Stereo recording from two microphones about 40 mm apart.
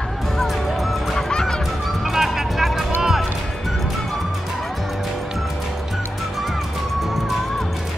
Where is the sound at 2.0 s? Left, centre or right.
Centre.